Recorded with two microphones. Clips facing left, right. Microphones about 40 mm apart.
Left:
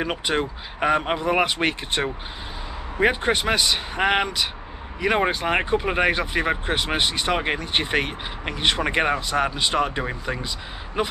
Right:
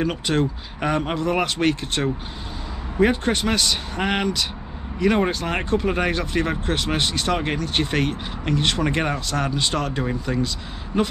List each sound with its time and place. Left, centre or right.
0.0 s speech: centre